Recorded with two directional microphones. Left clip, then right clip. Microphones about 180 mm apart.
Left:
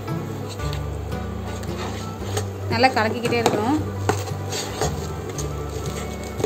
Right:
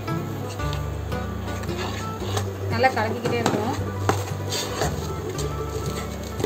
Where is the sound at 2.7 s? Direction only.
65° left (ahead or behind).